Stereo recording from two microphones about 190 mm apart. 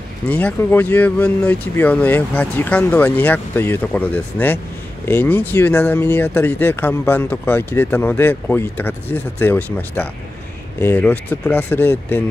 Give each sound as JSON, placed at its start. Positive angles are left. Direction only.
{"t": 0.3, "sound": "speech", "side_deg": 10}